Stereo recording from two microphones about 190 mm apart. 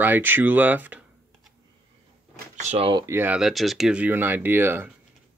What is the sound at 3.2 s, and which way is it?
Speech, 5° right (ahead or behind).